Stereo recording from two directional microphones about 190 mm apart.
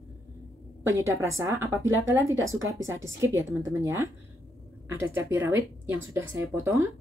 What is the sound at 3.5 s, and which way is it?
A woman's voice, 15° right (ahead or behind).